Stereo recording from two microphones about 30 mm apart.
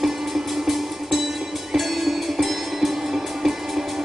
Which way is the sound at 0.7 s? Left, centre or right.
Centre.